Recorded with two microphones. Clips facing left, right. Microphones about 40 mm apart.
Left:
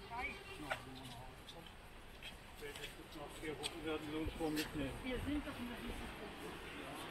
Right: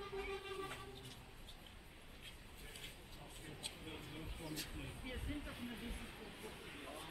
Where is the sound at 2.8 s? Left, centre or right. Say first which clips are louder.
Left 5 dB; left.